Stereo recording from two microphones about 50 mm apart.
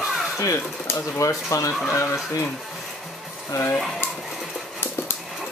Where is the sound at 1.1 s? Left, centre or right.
Left.